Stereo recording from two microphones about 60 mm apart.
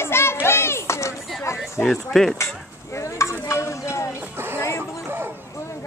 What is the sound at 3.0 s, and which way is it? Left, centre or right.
Stir, left.